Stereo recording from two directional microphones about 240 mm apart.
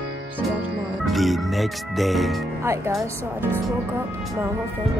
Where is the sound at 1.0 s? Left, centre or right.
Centre.